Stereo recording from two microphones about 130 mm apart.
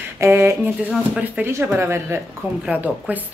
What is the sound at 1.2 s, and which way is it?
Speech, 15° right (ahead or behind).